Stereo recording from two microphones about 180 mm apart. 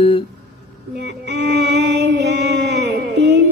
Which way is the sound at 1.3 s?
70° right (ahead or behind).